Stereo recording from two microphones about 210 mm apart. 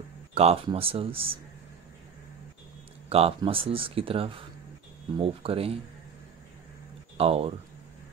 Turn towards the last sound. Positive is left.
turn(degrees=-30)  # may be behind; listen again after turning